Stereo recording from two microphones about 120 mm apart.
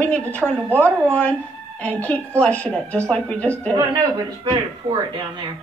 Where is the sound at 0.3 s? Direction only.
10° left (ahead or behind).